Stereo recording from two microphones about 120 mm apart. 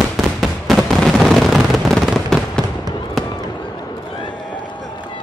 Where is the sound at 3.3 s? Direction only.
35° left (ahead or behind).